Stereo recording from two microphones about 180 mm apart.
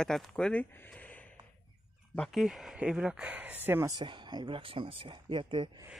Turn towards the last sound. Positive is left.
turn(degrees=-30)  # may be behind; listen again after turning